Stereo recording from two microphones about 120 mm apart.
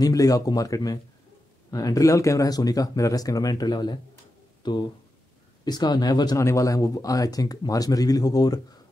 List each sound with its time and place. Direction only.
0.0 s speech: 30° left (ahead or behind)